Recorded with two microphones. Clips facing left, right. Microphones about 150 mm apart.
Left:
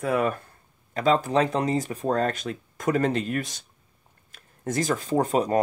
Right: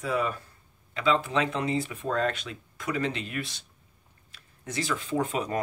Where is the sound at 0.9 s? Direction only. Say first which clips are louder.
Left 4 dB; 45° left (ahead or behind).